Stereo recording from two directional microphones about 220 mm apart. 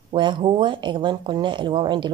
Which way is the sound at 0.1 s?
20° right (ahead or behind).